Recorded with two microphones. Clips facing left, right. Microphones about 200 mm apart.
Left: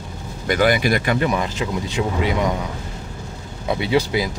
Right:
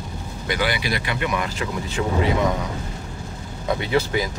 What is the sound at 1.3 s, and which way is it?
Speech, 20° left (ahead or behind).